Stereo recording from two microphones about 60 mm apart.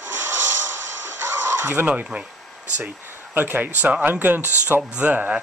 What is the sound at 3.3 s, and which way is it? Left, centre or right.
Speech, right.